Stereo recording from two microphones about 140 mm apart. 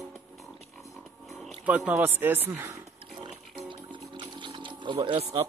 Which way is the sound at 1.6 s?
10° right (ahead or behind).